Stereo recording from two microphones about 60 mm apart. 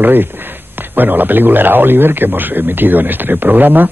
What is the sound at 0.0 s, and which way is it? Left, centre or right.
A man's voice, right.